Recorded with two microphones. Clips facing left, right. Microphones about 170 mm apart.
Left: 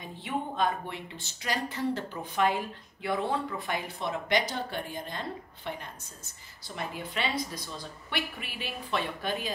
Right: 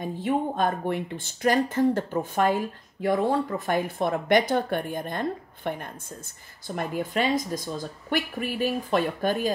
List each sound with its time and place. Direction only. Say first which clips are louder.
0.0 s speech: right 8 dB; 45° right (ahead or behind)